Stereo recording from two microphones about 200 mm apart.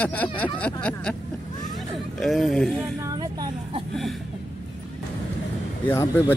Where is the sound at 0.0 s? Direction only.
5° left (ahead or behind).